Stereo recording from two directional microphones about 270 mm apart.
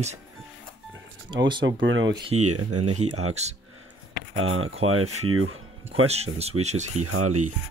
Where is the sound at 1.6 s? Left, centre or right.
Right.